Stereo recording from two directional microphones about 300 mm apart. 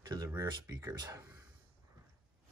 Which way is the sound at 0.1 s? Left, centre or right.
Centre.